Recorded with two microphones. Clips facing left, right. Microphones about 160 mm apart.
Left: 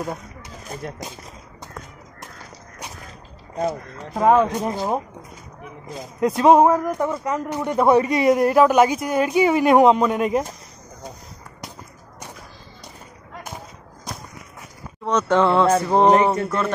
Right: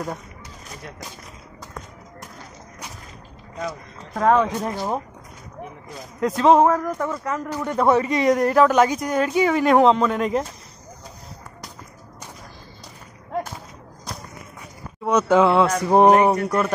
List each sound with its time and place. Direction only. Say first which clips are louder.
4.1 s a man's voice: left 2 dB; 10° left (ahead or behind)
6.2 s a man's voice: left 1 dB; 10° left (ahead or behind)
15.0 s speech: right 1 dB; 10° right (ahead or behind)